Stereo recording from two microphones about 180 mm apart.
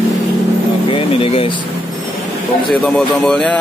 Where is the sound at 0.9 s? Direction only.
30° left (ahead or behind).